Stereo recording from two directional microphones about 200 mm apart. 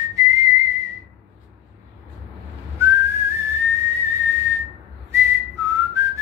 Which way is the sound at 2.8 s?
15° right (ahead or behind).